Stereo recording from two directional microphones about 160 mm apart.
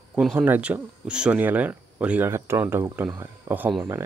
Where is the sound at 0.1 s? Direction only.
5° right (ahead or behind).